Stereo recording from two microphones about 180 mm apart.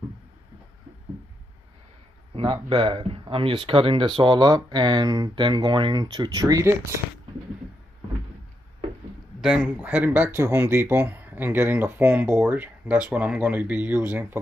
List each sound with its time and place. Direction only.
2.3 s speech: 30° right (ahead or behind)
9.4 s speech: 5° right (ahead or behind)